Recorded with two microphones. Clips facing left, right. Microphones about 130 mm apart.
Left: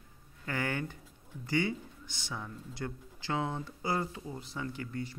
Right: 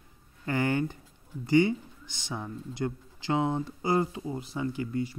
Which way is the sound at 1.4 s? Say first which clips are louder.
Right 9 dB; 20° right (ahead or behind).